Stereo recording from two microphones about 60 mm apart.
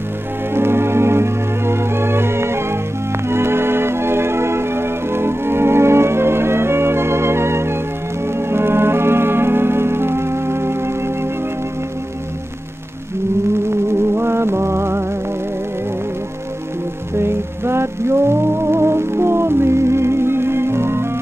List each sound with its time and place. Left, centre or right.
0.6 s music: right
13.7 s music: right
17.2 s music: right